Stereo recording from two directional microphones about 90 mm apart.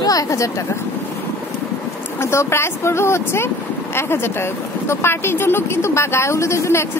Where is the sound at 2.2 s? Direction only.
30° left (ahead or behind).